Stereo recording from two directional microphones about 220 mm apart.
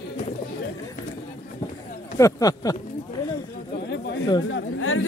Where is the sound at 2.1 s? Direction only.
15° left (ahead or behind).